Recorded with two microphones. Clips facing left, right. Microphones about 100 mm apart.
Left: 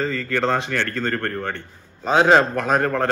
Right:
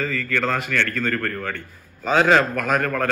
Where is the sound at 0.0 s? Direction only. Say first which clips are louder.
Left 2 dB; 30° left (ahead or behind).